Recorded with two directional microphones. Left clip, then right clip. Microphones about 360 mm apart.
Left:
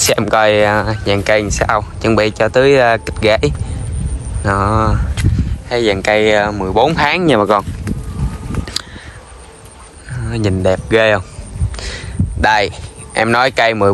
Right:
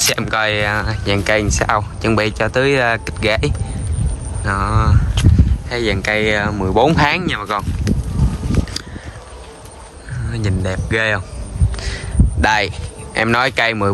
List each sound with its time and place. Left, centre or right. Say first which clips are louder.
0.0 s speech: left 5 dB; centre
10.2 s speech: left 9 dB; centre